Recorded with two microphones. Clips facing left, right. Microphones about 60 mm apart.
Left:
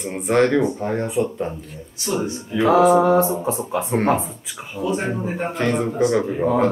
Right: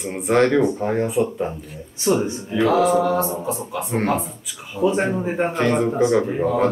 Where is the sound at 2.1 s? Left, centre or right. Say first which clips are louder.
Right 5 dB; centre.